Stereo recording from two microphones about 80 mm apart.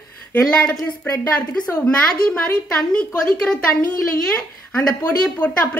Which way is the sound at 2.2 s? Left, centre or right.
Centre.